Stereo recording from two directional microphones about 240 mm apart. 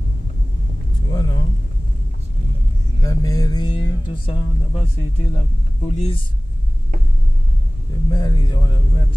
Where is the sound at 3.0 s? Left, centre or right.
Centre.